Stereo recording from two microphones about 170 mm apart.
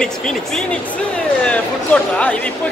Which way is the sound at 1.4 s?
10° left (ahead or behind).